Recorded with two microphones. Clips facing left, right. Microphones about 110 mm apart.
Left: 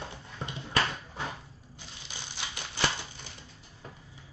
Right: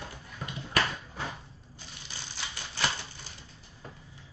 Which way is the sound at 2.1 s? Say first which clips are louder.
Left 1 dB; 20° left (ahead or behind).